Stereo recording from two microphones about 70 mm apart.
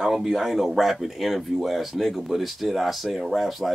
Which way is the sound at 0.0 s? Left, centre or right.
Centre.